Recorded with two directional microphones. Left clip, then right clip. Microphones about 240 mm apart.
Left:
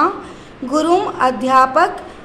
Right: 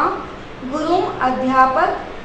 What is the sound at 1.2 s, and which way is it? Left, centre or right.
Speech, left.